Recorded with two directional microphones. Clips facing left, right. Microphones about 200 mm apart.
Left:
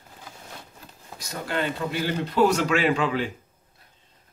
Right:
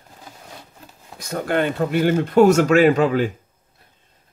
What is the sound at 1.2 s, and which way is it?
Speech, 55° right (ahead or behind).